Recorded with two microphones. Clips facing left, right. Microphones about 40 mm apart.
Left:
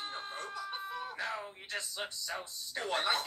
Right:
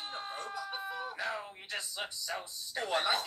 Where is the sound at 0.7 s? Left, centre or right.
Centre.